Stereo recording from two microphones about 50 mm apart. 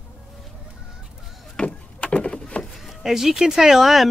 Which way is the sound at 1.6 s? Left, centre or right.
Centre.